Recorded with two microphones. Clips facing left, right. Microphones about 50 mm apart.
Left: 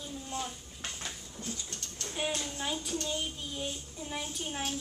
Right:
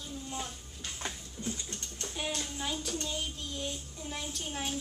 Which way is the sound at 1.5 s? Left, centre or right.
Right.